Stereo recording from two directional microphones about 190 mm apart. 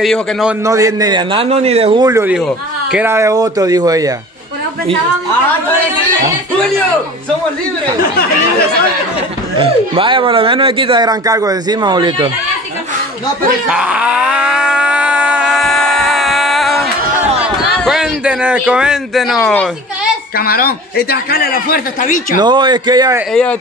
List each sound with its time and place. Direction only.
0.0 s a man's voice: centre (ahead or behind)
0.7 s speech: 15° right (ahead or behind)
2.2 s speech: 5° right (ahead or behind); by 4.1 s 20° right (ahead or behind)
9.6 s speech: 25° right (ahead or behind)
13.7 s groan: 5° right (ahead or behind)
17.7 s a man's voice: 5° right (ahead or behind)
20.3 s a man's voice: 50° left (ahead or behind)
22.4 s speech: 25° right (ahead or behind)